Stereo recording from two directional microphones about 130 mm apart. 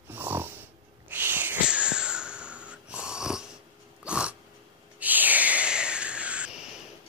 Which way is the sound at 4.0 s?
10° right (ahead or behind).